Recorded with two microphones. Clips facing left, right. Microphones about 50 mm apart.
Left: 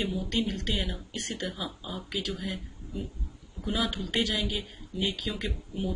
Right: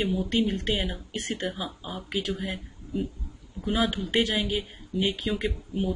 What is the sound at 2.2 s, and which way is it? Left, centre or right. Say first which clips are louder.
Speech: right 3 dB; right.